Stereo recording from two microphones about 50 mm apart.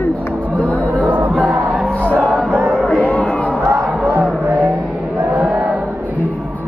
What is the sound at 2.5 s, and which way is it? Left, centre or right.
Music, right.